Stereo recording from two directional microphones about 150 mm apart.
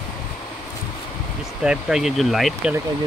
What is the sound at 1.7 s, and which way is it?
Speech, 5° right (ahead or behind).